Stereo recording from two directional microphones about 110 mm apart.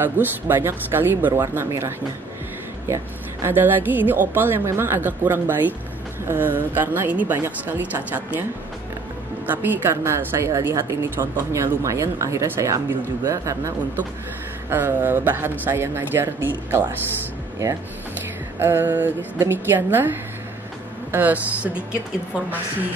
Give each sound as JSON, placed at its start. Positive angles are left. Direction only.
{"t": 0.0, "sound": "a woman's voice", "side_deg": -20}
{"t": 3.4, "sound": "a woman's voice", "side_deg": -20}
{"t": 9.5, "sound": "a woman's voice", "side_deg": -15}
{"t": 14.7, "sound": "a woman's voice", "side_deg": -20}
{"t": 18.6, "sound": "a woman's voice", "side_deg": -20}